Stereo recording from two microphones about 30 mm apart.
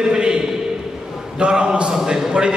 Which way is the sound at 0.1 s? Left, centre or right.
Right.